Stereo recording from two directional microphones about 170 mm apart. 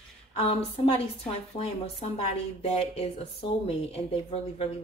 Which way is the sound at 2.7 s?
35° left (ahead or behind).